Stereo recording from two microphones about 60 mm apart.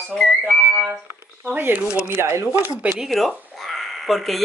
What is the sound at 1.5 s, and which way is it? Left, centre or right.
Speech, right.